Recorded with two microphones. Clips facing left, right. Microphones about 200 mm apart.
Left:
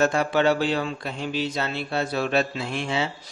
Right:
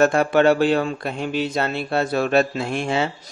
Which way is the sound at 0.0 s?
55° right (ahead or behind).